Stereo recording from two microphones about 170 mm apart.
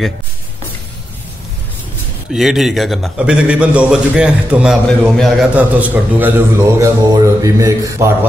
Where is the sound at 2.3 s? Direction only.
Centre (ahead or behind); by 8.3 s 20° right (ahead or behind).